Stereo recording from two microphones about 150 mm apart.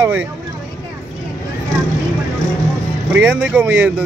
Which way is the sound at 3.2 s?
10° right (ahead or behind).